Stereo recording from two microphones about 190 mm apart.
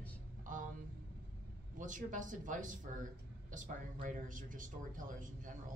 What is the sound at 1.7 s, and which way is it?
Speech, 40° right (ahead or behind).